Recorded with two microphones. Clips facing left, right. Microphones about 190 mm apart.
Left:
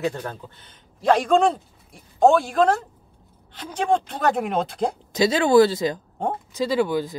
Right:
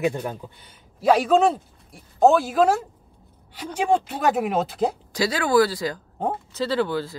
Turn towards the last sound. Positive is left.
turn(degrees=15)  # may be behind; listen again after turning